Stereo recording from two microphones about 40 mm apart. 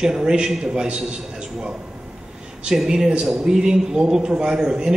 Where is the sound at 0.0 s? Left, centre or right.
Centre.